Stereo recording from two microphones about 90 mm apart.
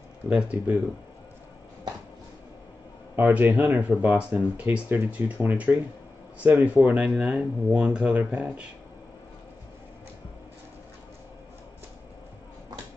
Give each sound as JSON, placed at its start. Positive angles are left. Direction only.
{"t": 0.3, "sound": "speech", "side_deg": -15}
{"t": 3.2, "sound": "speech", "side_deg": -20}